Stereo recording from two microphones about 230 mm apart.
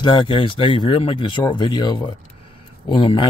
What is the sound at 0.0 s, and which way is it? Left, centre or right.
Speech, left.